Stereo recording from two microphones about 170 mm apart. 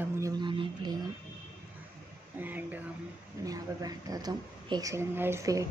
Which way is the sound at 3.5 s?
20° right (ahead or behind).